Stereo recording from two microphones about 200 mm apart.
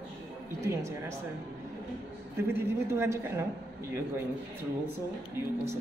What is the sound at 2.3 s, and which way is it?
A woman's voice, 10° right (ahead or behind).